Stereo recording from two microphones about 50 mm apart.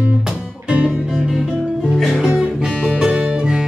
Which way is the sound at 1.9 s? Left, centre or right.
Centre.